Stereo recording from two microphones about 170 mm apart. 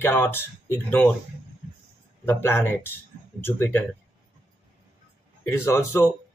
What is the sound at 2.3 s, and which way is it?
Speech, 15° left (ahead or behind).